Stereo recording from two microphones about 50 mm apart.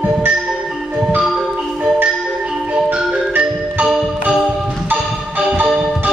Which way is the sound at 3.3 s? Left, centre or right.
Right.